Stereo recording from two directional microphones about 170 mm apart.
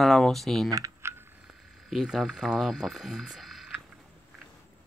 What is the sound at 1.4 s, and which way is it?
Speech, centre (ahead or behind).